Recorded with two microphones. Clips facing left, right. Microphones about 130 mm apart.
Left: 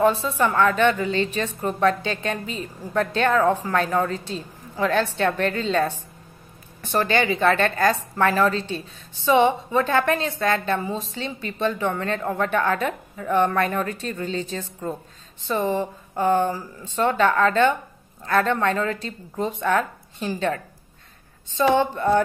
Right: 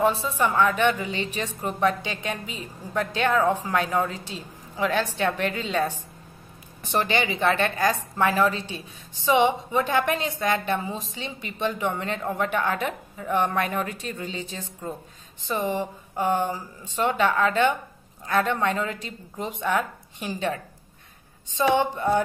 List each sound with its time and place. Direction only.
0.0 s a woman's voice: 15° right (ahead or behind)
21.7 s a woman's voice: 15° right (ahead or behind)